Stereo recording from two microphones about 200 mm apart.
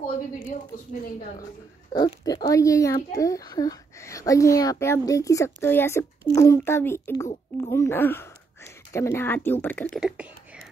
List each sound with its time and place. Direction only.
1.9 s speech: 25° left (ahead or behind)
9.8 s beatboxing: 5° right (ahead or behind)